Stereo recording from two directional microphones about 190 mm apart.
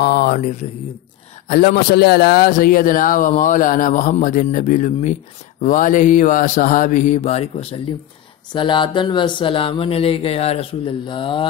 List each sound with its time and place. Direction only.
0.0 s a man's voice: 55° left (ahead or behind); by 11.4 s 25° left (ahead or behind)